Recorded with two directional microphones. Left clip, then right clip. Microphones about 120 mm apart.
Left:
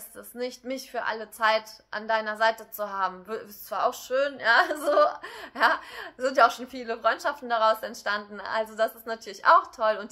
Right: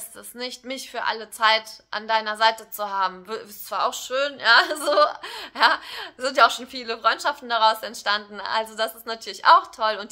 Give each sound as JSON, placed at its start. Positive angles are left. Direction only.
{"t": 0.4, "sound": "a woman's voice", "side_deg": -15}